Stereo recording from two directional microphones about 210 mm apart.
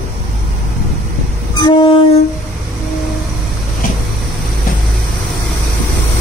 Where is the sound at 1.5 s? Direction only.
20° left (ahead or behind).